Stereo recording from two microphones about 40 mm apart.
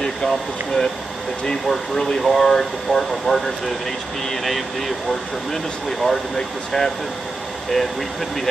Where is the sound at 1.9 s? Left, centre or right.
Centre.